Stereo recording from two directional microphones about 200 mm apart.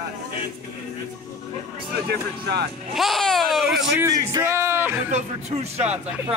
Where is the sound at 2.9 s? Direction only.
Centre (ahead or behind).